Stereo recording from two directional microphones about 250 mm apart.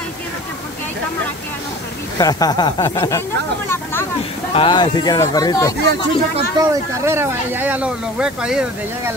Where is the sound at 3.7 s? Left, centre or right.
Centre.